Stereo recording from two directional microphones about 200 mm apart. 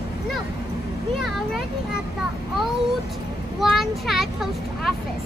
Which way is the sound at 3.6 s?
Centre (ahead or behind).